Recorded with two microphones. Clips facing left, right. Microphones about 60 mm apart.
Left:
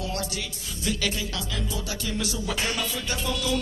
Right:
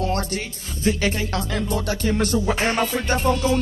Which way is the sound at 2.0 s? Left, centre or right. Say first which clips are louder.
Right 9 dB; right.